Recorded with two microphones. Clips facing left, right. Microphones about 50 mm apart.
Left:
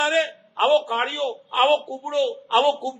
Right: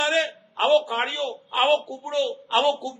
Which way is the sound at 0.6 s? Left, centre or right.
Centre.